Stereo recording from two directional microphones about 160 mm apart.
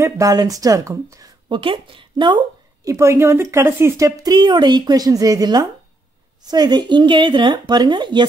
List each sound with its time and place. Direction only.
0.0 s speech: 20° right (ahead or behind)